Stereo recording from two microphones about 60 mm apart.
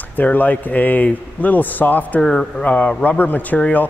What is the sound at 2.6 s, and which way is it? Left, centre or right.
A man's voice, left.